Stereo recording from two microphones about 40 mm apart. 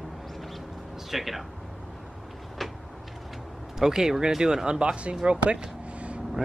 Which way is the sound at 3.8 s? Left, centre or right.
Centre.